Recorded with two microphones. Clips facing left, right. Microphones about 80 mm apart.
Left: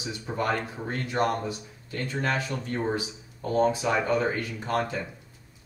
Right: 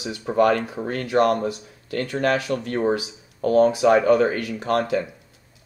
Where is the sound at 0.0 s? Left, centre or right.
Right.